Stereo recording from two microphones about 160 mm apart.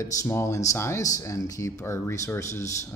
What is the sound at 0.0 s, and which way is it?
Speech, 15° left (ahead or behind).